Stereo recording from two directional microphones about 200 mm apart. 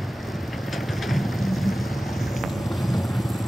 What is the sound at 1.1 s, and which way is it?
Vehicle, centre (ahead or behind).